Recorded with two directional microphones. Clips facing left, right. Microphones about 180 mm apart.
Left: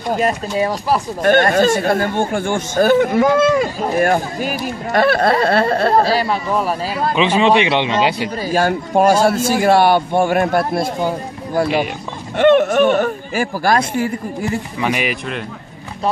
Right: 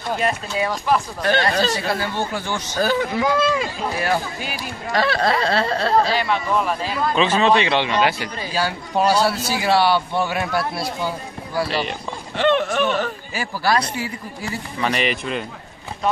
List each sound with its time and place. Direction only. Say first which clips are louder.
0.1 s speech: left 5 dB; 40° left (ahead or behind)
1.2 s speech: left 11 dB; 50° left (ahead or behind)
6.0 s speech: left 4 dB; 35° left (ahead or behind)
7.2 s a man's voice: left 3 dB; 15° left (ahead or behind)
8.4 s speech: left 7 dB; 50° left (ahead or behind)
14.8 s a man's voice: right 1 dB; 10° left (ahead or behind)